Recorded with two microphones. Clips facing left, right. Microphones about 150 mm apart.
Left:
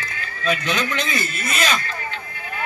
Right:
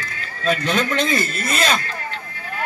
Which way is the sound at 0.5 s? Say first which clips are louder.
Right 5 dB; 40° right (ahead or behind).